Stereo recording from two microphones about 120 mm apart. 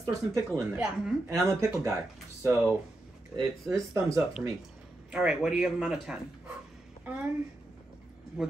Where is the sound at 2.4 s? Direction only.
20° right (ahead or behind).